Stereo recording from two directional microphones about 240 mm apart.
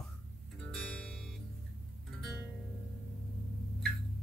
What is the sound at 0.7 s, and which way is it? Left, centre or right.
Music, centre.